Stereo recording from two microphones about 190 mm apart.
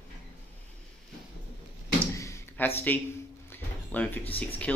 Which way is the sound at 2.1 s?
15° left (ahead or behind).